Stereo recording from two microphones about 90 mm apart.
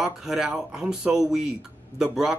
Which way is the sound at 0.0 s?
5° right (ahead or behind).